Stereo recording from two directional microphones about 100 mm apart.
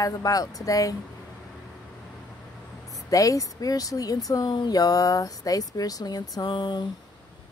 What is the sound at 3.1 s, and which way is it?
Speech, 35° left (ahead or behind).